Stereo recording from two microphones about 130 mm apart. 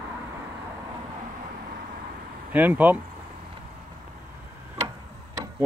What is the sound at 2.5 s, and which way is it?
Speech, 15° right (ahead or behind).